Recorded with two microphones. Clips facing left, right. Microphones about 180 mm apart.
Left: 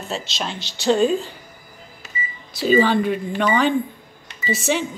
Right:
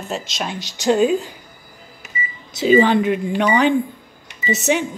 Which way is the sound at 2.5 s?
20° right (ahead or behind).